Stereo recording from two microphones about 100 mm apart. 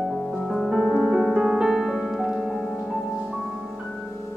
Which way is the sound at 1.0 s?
Centre (ahead or behind).